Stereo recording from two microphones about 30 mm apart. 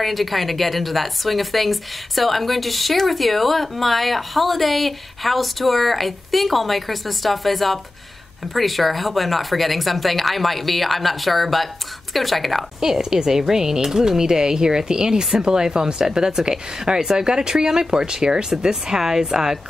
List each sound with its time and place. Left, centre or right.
0.0 s a woman's voice: centre
12.8 s a woman's voice: centre